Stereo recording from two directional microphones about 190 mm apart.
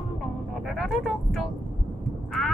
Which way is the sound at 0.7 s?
Centre (ahead or behind).